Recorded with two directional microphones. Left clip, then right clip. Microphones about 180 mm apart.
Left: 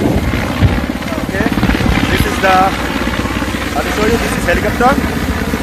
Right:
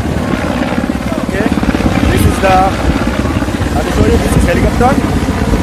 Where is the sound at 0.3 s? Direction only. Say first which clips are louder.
Right 2 dB; 50° right (ahead or behind).